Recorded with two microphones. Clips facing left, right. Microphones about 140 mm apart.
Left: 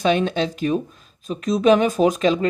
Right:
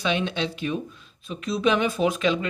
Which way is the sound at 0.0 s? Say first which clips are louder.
Left 6 dB; 45° left (ahead or behind).